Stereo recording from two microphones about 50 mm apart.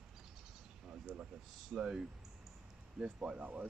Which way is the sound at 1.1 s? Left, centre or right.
Right.